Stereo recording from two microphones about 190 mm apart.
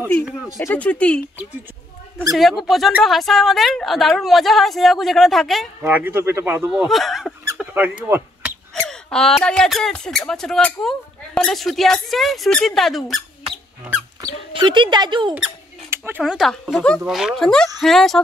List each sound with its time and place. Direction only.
0.6 s speech: 10° left (ahead or behind)
2.3 s speech: centre (ahead or behind)
5.9 s speech: 10° right (ahead or behind)
7.5 s a sound: 10° right (ahead or behind)
9.1 s speech: 5° left (ahead or behind)
14.5 s speech: 25° right (ahead or behind)
15.3 s speech: 10° right (ahead or behind)